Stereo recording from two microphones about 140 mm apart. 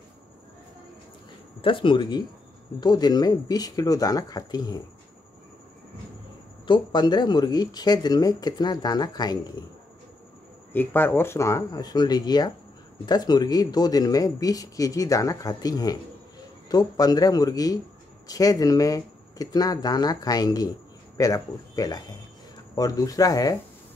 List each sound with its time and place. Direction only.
1.6 s speech: 35° left (ahead or behind)
6.7 s speech: 30° left (ahead or behind)
10.7 s speech: 15° left (ahead or behind)